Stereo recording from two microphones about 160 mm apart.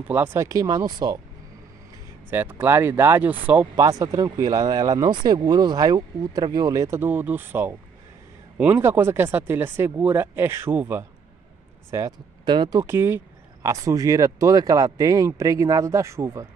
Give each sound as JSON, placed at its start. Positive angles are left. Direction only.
{"t": 0.1, "sound": "speech", "side_deg": -15}
{"t": 2.3, "sound": "speech", "side_deg": -15}
{"t": 3.7, "sound": "speech", "side_deg": -20}
{"t": 11.9, "sound": "speech", "side_deg": -25}